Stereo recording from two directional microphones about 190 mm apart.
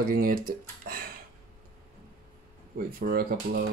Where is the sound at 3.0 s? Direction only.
50° right (ahead or behind).